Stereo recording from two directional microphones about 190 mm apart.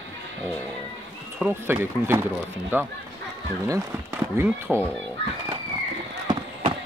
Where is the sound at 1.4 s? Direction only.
10° right (ahead or behind).